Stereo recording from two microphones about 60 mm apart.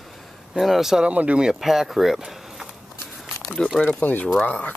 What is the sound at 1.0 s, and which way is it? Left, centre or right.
Speech, right.